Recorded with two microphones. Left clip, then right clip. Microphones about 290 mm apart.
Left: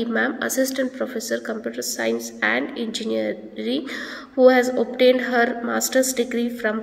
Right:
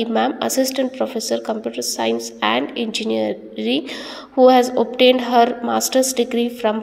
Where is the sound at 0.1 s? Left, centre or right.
Centre.